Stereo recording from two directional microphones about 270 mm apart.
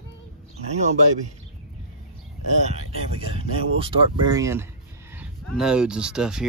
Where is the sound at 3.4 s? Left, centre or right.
Centre.